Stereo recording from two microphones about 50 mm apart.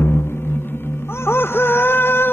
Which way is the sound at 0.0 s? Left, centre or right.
Left.